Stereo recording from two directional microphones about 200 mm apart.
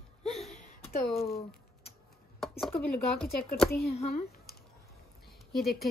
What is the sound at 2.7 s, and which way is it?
Speech, 5° left (ahead or behind).